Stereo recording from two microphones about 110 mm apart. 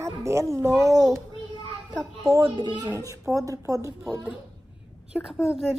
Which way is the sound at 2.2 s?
25° right (ahead or behind).